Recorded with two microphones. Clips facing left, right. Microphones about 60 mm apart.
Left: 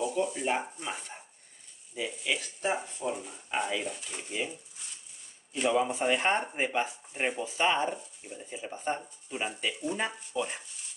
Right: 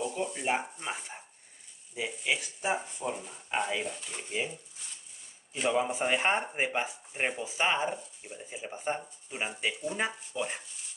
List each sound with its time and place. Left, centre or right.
0.1 s speech: centre
2.3 s speech: centre
5.8 s speech: centre